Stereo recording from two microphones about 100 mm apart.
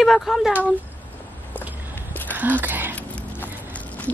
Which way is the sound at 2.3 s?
20° right (ahead or behind).